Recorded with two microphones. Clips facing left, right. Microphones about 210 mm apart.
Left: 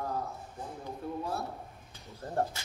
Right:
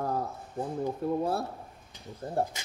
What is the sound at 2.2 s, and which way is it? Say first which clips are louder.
Speech: right 2 dB; 15° right (ahead or behind).